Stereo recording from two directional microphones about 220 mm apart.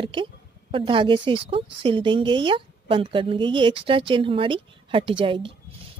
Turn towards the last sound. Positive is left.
turn(degrees=-25)  # may be behind; listen again after turning